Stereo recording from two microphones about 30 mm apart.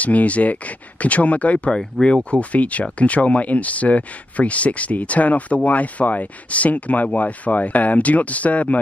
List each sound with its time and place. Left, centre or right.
0.0 s speech: left
2.0 s speech: left
2.3 s speech: left